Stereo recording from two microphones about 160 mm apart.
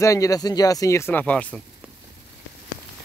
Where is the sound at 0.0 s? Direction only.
20° left (ahead or behind).